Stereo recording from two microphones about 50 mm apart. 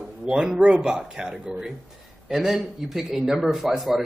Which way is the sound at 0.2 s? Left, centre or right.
Centre.